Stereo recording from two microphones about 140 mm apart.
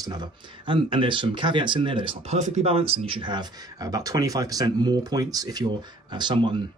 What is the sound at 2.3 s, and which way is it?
Speech, 55° right (ahead or behind).